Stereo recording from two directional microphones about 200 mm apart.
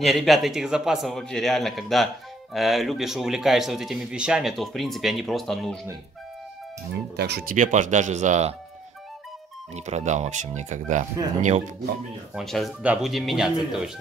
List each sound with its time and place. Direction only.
0.0 s speech: centre (ahead or behind)
7.2 s speech: 55° right (ahead or behind)
7.5 s speech: 40° right (ahead or behind)
9.8 s speech: 35° right (ahead or behind)
12.4 s speech: centre (ahead or behind)